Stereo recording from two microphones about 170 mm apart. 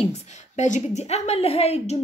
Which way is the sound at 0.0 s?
45° left (ahead or behind).